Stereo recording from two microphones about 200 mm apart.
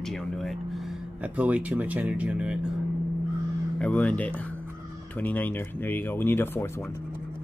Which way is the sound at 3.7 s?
5° left (ahead or behind).